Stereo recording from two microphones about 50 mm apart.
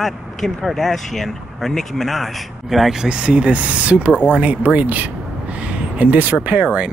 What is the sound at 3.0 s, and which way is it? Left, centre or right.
Speech, right.